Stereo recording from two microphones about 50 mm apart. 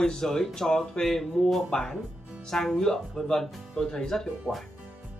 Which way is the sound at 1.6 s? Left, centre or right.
Centre.